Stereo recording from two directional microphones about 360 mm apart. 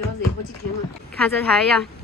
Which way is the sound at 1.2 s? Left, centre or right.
Centre.